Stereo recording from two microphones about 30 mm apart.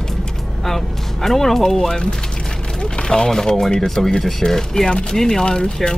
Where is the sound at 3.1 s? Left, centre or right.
Centre.